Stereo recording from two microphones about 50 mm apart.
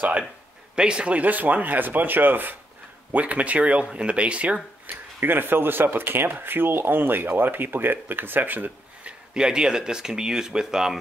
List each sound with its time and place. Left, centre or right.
0.7 s speech: centre
4.8 s speech: right
9.0 s speech: centre